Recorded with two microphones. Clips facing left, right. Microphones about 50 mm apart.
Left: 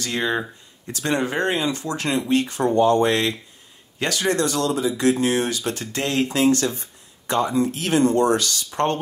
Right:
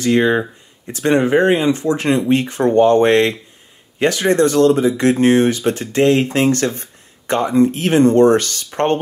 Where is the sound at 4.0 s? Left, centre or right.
Right.